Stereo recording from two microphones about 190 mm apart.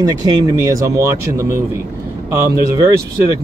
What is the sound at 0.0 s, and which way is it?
Speech, 20° right (ahead or behind).